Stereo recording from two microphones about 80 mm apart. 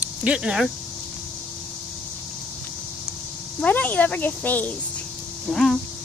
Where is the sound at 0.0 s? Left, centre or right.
Centre.